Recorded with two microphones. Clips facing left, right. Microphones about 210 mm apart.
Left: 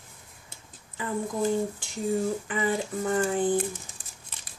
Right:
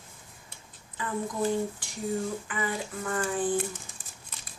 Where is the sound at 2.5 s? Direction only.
25° left (ahead or behind).